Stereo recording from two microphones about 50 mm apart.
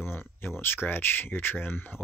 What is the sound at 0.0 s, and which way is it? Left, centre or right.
Speech, left.